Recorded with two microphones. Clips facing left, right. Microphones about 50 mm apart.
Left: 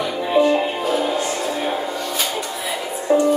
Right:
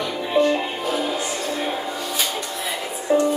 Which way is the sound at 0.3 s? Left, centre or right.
Centre.